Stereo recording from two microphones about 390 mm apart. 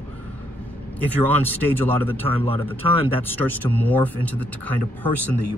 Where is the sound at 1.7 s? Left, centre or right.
Centre.